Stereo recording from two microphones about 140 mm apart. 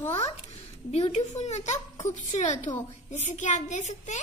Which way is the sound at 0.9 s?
50° left (ahead or behind).